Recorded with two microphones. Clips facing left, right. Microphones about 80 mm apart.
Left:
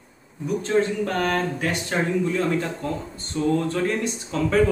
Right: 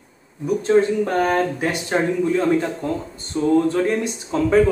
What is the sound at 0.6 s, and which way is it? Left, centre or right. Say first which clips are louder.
Speech: right 6 dB; centre.